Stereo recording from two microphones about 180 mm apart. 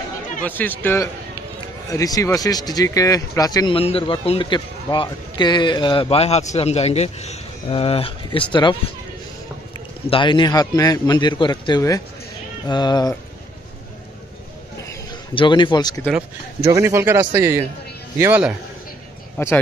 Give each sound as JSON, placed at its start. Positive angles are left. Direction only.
{"t": 0.4, "sound": "speech", "side_deg": 10}
{"t": 10.0, "sound": "speech", "side_deg": 30}
{"t": 15.3, "sound": "speech", "side_deg": 25}
{"t": 16.1, "sound": "speech", "side_deg": -10}
{"t": 19.3, "sound": "speech", "side_deg": 10}